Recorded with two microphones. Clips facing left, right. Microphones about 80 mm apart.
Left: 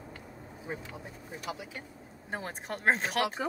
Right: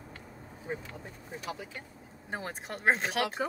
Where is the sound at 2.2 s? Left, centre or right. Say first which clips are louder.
Left 1 dB; centre.